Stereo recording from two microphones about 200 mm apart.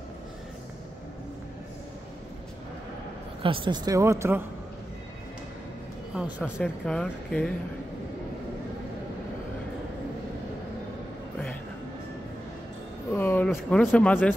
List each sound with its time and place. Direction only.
3.4 s speech: 25° right (ahead or behind)
6.1 s speech: 5° right (ahead or behind)
13.1 s speech: 10° left (ahead or behind)